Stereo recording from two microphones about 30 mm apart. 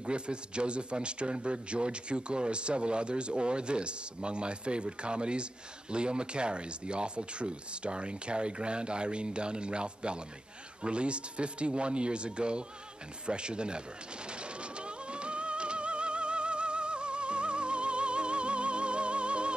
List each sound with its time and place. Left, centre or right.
0.0 s a man's voice: right
14.6 s music: right